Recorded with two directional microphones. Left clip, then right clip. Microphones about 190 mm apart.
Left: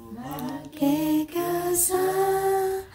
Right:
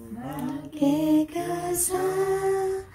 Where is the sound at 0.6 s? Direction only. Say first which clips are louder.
Right 1 dB; 15° left (ahead or behind).